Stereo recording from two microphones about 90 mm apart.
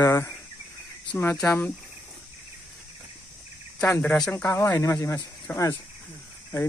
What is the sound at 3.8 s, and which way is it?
Speech, 20° left (ahead or behind).